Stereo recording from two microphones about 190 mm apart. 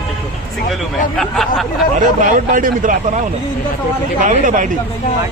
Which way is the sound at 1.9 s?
45° right (ahead or behind).